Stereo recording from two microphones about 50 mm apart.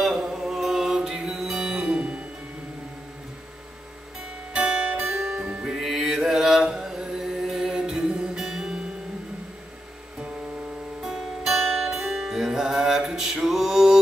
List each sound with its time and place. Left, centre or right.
0.0 s music: centre
4.6 s music: centre
11.0 s music: centre